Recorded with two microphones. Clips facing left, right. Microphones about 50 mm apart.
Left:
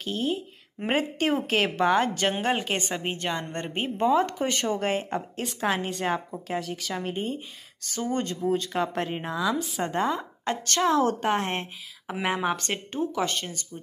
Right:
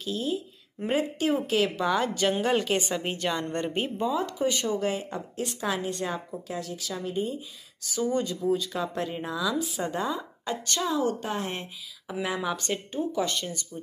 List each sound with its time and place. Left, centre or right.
0.0 s a woman's voice: left
0.7 s a woman's voice: left
4.4 s a woman's voice: left
6.4 s a woman's voice: left
11.0 s a woman's voice: left